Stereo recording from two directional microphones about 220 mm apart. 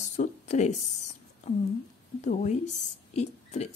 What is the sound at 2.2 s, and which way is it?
A woman's voice, 30° left (ahead or behind).